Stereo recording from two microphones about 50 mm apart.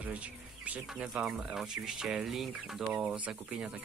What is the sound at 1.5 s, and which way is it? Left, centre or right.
Speech, centre.